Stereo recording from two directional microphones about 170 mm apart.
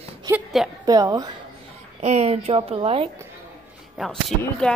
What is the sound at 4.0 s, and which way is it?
Speech, centre (ahead or behind).